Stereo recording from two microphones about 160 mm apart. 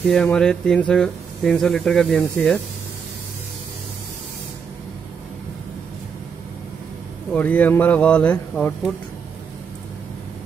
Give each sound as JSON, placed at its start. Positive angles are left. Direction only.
{"t": 0.0, "sound": "speech", "side_deg": 5}
{"t": 7.3, "sound": "speech", "side_deg": 10}